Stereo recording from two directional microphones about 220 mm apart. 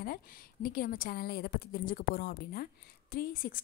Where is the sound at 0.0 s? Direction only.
40° left (ahead or behind).